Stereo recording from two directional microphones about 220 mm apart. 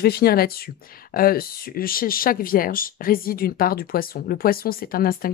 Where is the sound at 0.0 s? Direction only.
45° left (ahead or behind).